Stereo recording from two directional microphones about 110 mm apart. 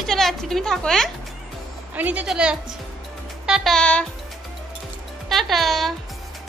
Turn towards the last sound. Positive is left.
turn(degrees=0)  # may be behind; listen again after turning